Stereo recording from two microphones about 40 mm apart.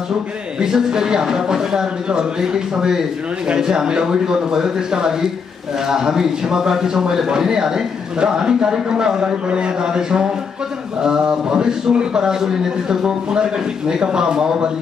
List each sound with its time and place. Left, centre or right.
0.6 s a man's voice: centre